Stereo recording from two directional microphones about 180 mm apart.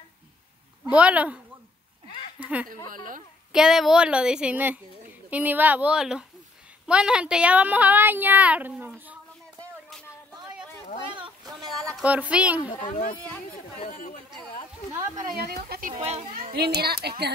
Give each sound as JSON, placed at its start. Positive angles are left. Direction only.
{"t": 0.8, "sound": "a woman's voice", "side_deg": -5}
{"t": 2.4, "sound": "a woman's voice", "side_deg": -10}
{"t": 2.9, "sound": "speech", "side_deg": -50}
{"t": 3.5, "sound": "a woman's voice", "side_deg": -5}
{"t": 9.6, "sound": "a sound", "side_deg": 5}
{"t": 11.6, "sound": "a woman's voice", "side_deg": 0}
{"t": 12.7, "sound": "speech", "side_deg": 45}
{"t": 15.5, "sound": "a child's voice", "side_deg": -55}
{"t": 15.9, "sound": "a child's voice", "side_deg": -35}
{"t": 16.3, "sound": "a child's voice", "side_deg": -55}